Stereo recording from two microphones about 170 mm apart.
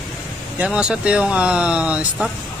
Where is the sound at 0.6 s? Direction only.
5° right (ahead or behind).